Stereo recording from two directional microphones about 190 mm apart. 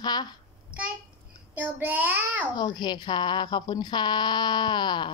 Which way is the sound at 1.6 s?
10° right (ahead or behind).